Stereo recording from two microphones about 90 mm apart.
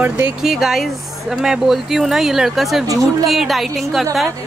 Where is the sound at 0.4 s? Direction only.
5° right (ahead or behind).